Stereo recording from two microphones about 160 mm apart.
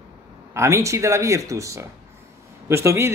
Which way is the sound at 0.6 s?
20° right (ahead or behind).